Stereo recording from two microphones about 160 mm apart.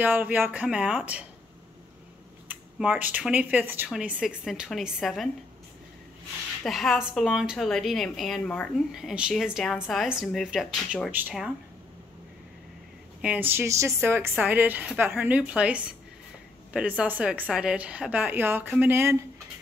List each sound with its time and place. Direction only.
0.0 s speech: 10° right (ahead or behind)
2.4 s speech: 10° right (ahead or behind)
6.6 s a woman's voice: centre (ahead or behind)
13.2 s speech: 10° right (ahead or behind)